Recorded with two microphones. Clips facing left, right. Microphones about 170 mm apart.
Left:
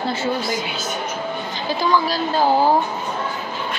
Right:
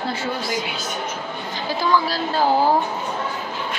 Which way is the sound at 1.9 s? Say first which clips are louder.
Left 1 dB; 15° left (ahead or behind).